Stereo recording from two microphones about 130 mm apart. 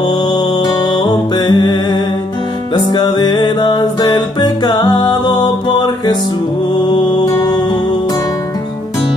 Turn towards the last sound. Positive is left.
turn(degrees=30)  # may be behind; listen again after turning